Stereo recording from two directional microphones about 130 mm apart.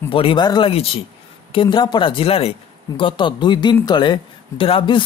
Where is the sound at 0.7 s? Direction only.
45° left (ahead or behind).